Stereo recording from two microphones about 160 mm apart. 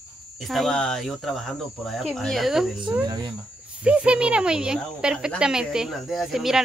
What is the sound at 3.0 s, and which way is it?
Speech, 25° right (ahead or behind).